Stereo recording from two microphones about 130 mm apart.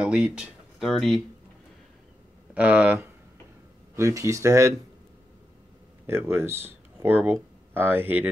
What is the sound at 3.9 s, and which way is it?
Speech, 25° right (ahead or behind).